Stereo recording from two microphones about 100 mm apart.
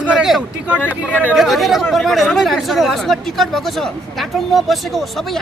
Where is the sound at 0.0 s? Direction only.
5° right (ahead or behind).